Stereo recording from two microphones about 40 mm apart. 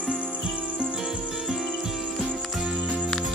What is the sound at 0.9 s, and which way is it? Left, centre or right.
Cricket, centre.